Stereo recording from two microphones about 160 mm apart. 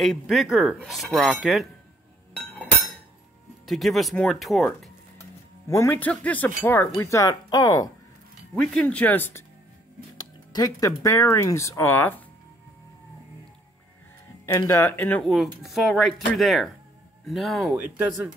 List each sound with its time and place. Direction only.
0.0 s speech: centre (ahead or behind)
2.5 s glass: 5° left (ahead or behind)
3.6 s speech: centre (ahead or behind)
5.7 s speech: 20° left (ahead or behind)
8.5 s speech: 5° left (ahead or behind)
10.1 s speech: 25° left (ahead or behind)
14.4 s speech: 15° left (ahead or behind)
15.2 s speech: centre (ahead or behind)
17.8 s speech: 10° right (ahead or behind)